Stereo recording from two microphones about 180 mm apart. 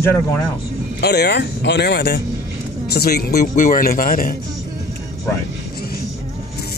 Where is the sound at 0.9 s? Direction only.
65° left (ahead or behind).